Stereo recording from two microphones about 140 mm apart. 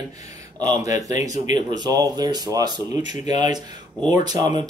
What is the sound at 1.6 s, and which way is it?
Speech, 30° right (ahead or behind).